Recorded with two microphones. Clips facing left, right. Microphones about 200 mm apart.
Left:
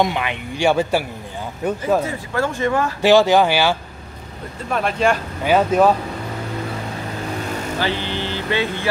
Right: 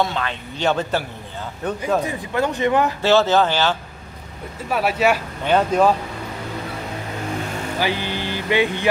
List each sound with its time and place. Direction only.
0.0 s speech: 15° left (ahead or behind)
2.0 s speech: 15° right (ahead or behind)
3.0 s speech: 15° left (ahead or behind)
4.6 s speech: 5° right (ahead or behind)
5.4 s speech: 5° left (ahead or behind)
7.8 s speech: 15° right (ahead or behind)